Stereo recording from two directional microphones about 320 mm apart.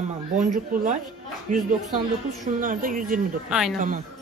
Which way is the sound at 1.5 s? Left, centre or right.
Right.